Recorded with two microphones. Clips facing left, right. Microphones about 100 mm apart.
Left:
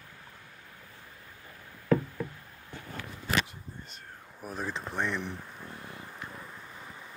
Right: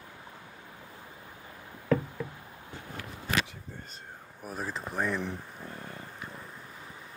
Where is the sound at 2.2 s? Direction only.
15° right (ahead or behind).